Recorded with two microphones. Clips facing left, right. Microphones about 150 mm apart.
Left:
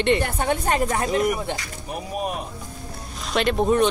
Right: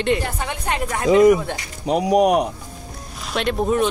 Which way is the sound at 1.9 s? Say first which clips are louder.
Right 13 dB; 90° right.